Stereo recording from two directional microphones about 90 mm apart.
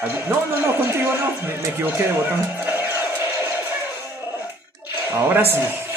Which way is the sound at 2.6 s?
20° right (ahead or behind).